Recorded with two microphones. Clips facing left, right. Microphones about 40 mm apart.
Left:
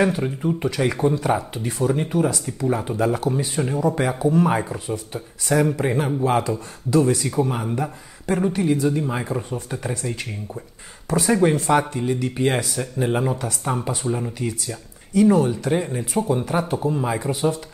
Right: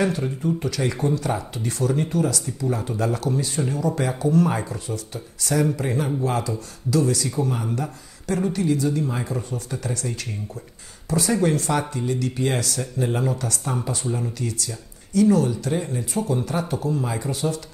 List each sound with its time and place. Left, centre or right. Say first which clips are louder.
0.0 s speech: left 2 dB; left